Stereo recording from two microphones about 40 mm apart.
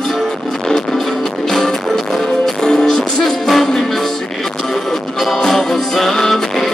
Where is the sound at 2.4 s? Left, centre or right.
Centre.